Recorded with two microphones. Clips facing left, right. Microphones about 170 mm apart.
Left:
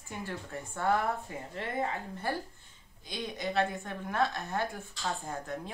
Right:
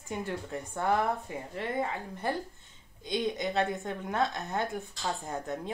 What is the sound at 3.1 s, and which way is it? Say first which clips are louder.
A woman's voice: right 5 dB; 20° right (ahead or behind).